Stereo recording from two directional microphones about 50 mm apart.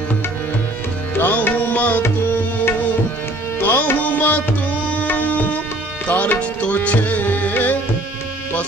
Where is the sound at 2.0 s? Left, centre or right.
Left.